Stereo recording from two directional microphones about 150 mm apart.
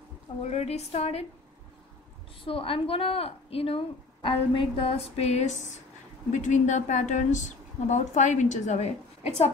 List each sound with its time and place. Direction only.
0.4 s a woman's voice: 45° left (ahead or behind)
2.4 s a woman's voice: 35° left (ahead or behind)